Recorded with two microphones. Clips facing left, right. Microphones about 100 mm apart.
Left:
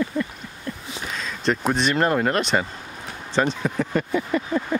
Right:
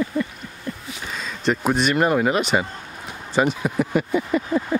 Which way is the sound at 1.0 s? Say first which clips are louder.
Right 1 dB; centre (ahead or behind).